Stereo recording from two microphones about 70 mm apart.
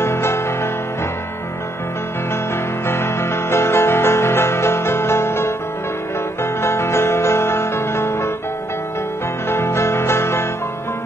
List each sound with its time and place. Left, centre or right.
0.0 s music: left
2.9 s music: left
9.5 s music: left